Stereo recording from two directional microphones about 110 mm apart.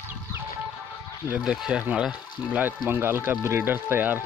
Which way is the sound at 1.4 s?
5° right (ahead or behind).